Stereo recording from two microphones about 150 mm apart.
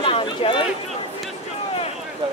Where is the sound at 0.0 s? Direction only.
35° left (ahead or behind).